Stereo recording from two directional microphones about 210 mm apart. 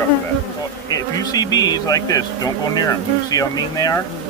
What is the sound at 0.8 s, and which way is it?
Speech, 15° left (ahead or behind).